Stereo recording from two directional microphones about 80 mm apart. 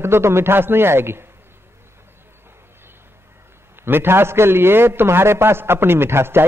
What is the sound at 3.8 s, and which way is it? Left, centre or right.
A man's voice, right.